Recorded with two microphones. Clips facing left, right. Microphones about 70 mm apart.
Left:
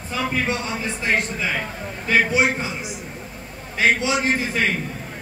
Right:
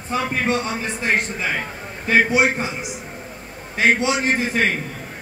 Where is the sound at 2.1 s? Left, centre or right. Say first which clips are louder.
Right 2 dB; right.